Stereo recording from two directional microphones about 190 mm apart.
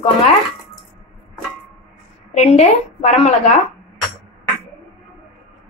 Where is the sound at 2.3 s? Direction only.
35° left (ahead or behind).